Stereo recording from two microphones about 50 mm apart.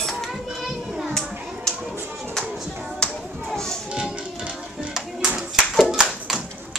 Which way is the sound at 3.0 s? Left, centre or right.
Centre.